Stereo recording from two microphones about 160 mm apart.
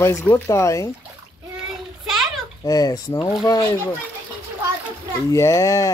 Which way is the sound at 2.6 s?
20° left (ahead or behind).